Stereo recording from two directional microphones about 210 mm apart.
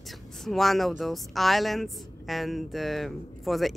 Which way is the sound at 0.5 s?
Centre (ahead or behind).